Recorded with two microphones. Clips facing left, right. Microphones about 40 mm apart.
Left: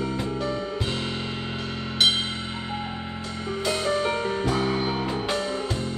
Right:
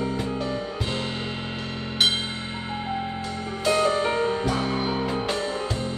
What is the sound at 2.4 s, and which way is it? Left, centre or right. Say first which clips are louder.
Music: right 1 dB; right.